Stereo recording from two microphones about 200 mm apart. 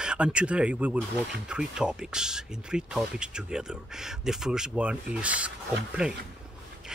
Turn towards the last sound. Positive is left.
turn(degrees=-5)  # may be behind; listen again after turning